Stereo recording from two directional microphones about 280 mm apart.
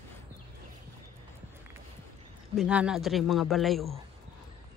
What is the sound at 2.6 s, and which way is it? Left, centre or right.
Speech, centre.